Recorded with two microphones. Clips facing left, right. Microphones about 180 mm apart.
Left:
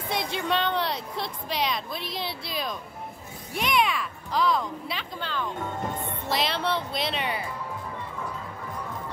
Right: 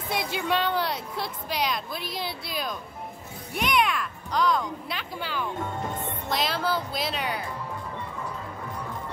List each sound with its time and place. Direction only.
0.1 s a woman's voice: centre (ahead or behind)